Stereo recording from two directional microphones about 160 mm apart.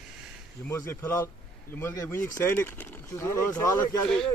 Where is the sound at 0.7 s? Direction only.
20° left (ahead or behind).